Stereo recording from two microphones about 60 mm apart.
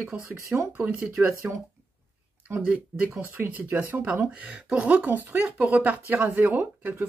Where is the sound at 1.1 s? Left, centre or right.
Right.